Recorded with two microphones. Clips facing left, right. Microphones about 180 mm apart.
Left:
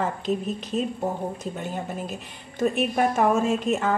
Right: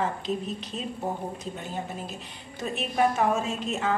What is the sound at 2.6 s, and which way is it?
A woman's voice, 50° left (ahead or behind).